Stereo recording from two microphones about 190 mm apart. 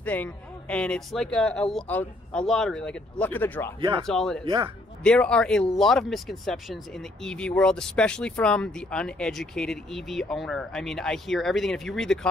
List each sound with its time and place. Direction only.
0.0 s speech: 10° left (ahead or behind)